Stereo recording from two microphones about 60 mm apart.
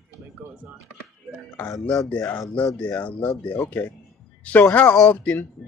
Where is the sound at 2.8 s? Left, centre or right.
Left.